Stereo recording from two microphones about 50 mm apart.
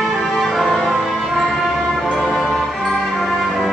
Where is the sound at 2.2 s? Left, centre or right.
Centre.